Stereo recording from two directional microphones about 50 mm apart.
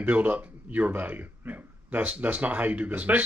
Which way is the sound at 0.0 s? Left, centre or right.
Right.